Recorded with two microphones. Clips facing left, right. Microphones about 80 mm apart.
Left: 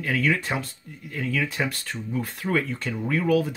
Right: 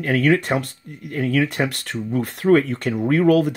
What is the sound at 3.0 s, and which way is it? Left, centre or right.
Speech, right.